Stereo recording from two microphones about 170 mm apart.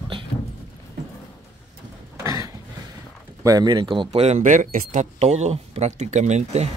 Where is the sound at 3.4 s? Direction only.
25° right (ahead or behind).